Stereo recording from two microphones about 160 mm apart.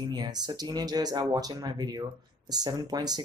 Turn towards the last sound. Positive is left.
turn(degrees=-25)  # may be behind; listen again after turning